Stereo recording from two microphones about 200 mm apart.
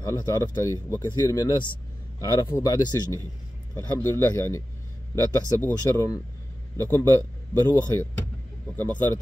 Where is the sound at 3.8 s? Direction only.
15° left (ahead or behind).